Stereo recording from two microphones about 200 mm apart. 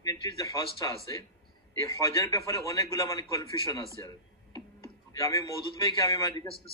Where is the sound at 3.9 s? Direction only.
20° left (ahead or behind).